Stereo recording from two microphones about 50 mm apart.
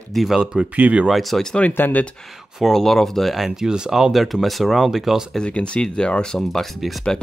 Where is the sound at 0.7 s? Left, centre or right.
Right.